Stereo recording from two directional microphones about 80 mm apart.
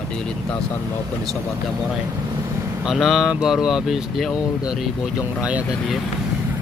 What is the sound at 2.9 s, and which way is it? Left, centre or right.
Speech, centre.